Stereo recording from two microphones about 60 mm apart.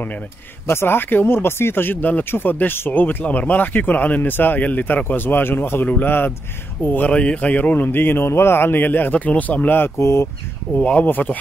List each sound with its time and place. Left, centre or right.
0.7 s speech: left
9.9 s speech: left
10.7 s speech: left